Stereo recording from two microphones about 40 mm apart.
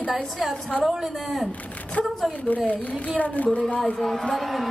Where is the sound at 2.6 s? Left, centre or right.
Left.